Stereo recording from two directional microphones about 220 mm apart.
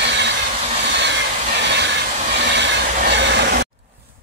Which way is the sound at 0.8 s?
55° right (ahead or behind).